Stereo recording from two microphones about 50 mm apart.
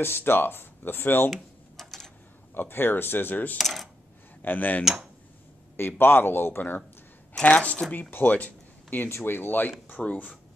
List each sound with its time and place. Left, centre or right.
0.0 s speech: left
1.3 s typing: centre
2.5 s speech: left
3.5 s speech: centre
4.4 s speech: left
5.8 s speech: left
7.4 s speech: left